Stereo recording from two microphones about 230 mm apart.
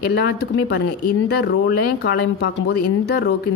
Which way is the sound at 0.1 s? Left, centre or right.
Left.